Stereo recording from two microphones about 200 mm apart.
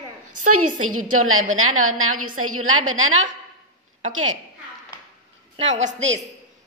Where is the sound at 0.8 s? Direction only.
90° right.